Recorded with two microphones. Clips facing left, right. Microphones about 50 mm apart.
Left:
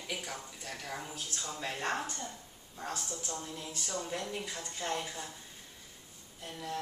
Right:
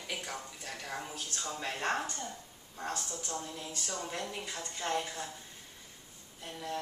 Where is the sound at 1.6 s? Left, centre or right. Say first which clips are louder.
Right 1 dB; centre.